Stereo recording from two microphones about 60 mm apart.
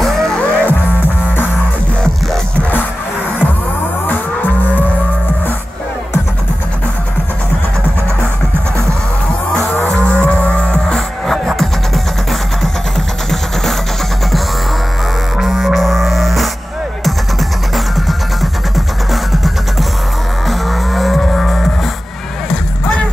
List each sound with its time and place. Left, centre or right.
0.0 s music: centre
0.4 s music: left
4.1 s music: left
9.8 s music: left
11.4 s music: centre
15.3 s music: centre
20.4 s music: centre